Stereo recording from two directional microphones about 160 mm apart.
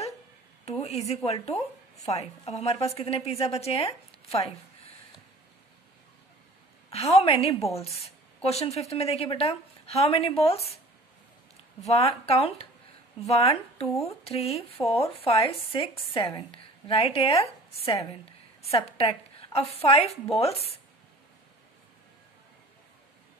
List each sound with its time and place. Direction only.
0.7 s speech: 40° left (ahead or behind)
6.9 s speech: 40° left (ahead or behind)
11.9 s speech: 40° left (ahead or behind)